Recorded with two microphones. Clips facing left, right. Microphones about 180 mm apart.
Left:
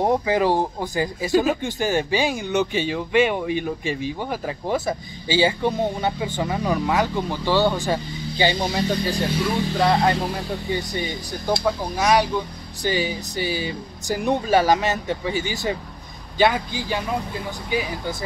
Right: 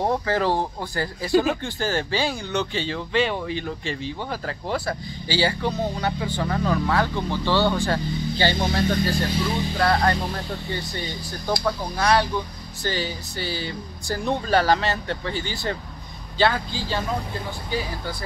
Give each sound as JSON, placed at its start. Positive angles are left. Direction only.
{"t": 0.0, "sound": "speech", "side_deg": 15}